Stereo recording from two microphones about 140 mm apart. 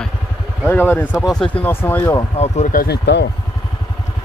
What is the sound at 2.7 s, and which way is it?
Speech, 75° left (ahead or behind).